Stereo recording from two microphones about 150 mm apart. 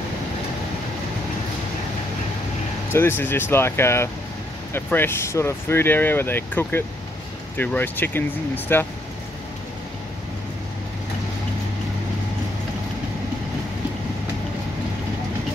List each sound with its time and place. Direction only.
2.9 s speech: 15° left (ahead or behind)